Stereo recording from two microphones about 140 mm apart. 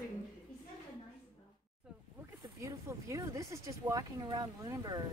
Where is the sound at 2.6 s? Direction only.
25° right (ahead or behind).